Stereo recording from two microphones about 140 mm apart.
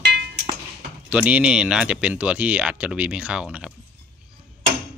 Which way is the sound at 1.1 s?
10° right (ahead or behind).